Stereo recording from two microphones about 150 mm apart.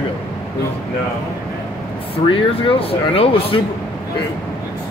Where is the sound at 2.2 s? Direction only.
35° left (ahead or behind).